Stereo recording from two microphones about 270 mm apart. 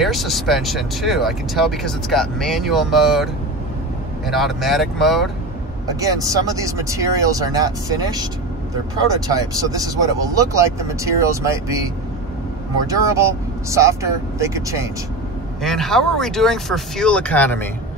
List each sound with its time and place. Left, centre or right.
0.0 s speech: centre
4.3 s speech: centre
5.9 s speech: centre
9.3 s speech: centre
15.6 s speech: centre